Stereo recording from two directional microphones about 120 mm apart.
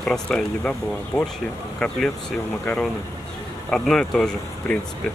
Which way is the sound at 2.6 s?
10° left (ahead or behind).